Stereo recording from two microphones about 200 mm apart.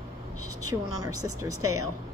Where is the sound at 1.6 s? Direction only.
90° right.